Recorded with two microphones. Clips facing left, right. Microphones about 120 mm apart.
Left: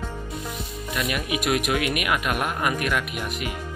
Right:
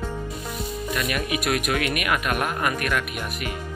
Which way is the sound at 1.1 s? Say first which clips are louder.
Left 2 dB; 15° left (ahead or behind).